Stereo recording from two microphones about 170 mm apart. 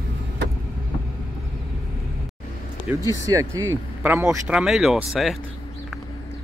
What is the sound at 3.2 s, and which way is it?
Speech, 20° right (ahead or behind).